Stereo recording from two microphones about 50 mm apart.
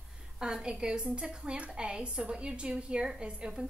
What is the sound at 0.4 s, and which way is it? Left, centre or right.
A woman's voice, centre.